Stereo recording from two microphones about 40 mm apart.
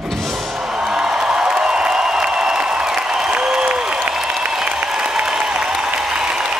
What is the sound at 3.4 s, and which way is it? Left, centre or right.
Applause, right.